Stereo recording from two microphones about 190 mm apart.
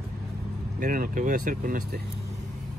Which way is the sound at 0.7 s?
50° right (ahead or behind).